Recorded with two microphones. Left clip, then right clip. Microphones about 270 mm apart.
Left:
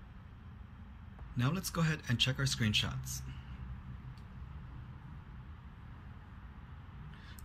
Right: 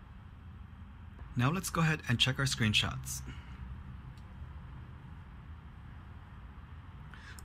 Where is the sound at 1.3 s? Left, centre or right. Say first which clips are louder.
Right 4 dB; centre.